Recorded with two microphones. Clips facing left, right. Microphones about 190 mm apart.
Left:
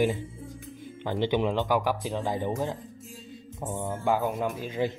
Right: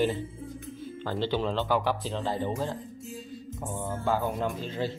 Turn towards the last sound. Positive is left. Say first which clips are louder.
# left 2 dB
turn(degrees=10)  # may be behind; listen again after turning